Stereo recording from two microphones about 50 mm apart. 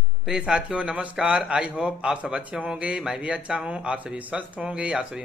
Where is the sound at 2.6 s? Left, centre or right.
Right.